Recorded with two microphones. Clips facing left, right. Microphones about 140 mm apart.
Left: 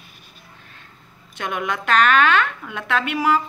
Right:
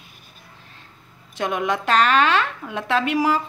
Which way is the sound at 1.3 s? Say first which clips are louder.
Right 3 dB; 30° right (ahead or behind).